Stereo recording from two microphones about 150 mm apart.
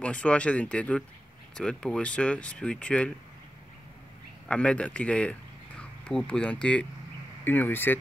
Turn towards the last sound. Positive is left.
turn(degrees=15)  # may be behind; listen again after turning